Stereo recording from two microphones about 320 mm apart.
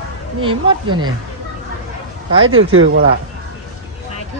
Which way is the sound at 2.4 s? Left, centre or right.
Right.